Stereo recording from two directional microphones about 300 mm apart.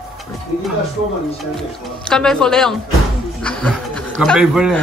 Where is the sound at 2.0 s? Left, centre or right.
Centre.